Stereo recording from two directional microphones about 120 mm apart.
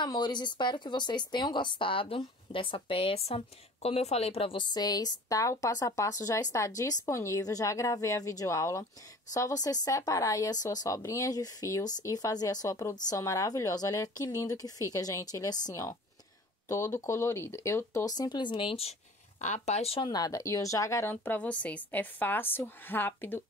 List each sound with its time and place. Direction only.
0.0 s a woman's voice: 40° left (ahead or behind)
4.7 s a woman's voice: 35° left (ahead or behind); by 18.9 s 50° left (ahead or behind)
19.4 s speech: 65° left (ahead or behind)
20.0 s a woman's voice: 35° left (ahead or behind); by 23.4 s 15° left (ahead or behind)